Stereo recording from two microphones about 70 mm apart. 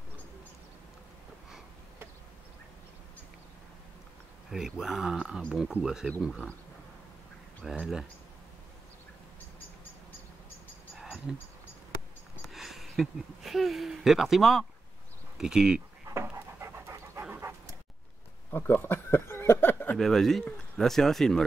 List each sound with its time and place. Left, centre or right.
4.5 s speech: centre
7.8 s speech: centre
11.3 s speech: centre
12.5 s speech: centre
16.5 s pant: right
17.4 s dog: right
18.5 s a sound: left
20.0 s speech: centre